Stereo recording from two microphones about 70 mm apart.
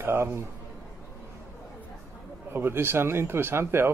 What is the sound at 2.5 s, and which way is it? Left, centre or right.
A man's voice, right.